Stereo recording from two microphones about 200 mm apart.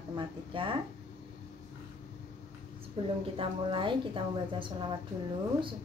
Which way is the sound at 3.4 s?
25° right (ahead or behind).